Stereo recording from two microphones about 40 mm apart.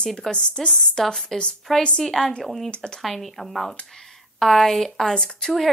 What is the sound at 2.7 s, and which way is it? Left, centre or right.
Speech, left.